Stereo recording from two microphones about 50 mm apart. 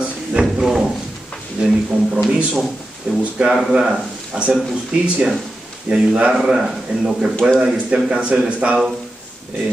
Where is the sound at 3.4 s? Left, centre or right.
Right.